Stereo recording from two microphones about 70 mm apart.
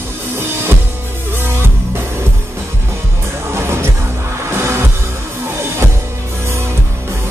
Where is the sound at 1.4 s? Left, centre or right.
Right.